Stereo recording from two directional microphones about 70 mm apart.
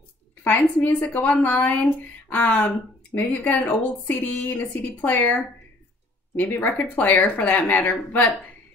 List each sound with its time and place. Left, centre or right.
0.4 s speech: left